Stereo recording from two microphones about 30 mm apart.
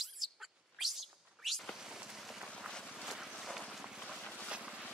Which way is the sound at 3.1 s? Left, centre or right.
Centre.